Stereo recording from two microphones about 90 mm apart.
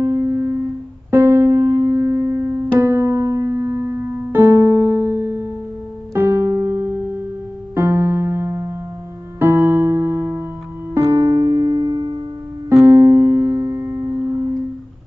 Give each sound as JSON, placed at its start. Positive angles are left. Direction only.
{"t": 0.0, "sound": "music", "side_deg": -30}
{"t": 2.8, "sound": "piano", "side_deg": -30}
{"t": 6.1, "sound": "music", "side_deg": -25}
{"t": 12.8, "sound": "music", "side_deg": -30}